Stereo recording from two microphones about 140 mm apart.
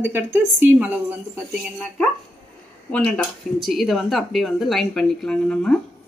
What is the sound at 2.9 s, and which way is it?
Speech, 10° left (ahead or behind).